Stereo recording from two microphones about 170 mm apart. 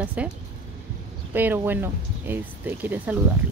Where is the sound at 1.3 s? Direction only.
10° right (ahead or behind).